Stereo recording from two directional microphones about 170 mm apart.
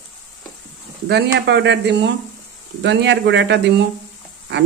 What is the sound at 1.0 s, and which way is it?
A woman's voice, 75° right (ahead or behind).